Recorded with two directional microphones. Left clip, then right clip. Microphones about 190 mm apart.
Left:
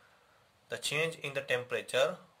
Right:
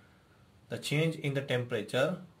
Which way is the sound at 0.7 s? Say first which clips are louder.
Even; 30° left (ahead or behind).